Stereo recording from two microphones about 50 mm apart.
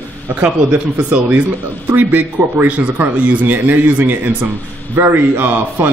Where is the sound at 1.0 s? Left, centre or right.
Right.